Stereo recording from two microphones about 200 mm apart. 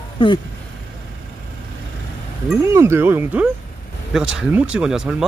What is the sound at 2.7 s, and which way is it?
Speech, 10° right (ahead or behind).